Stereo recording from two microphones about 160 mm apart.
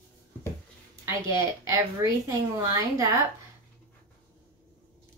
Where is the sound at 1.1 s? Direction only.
20° right (ahead or behind).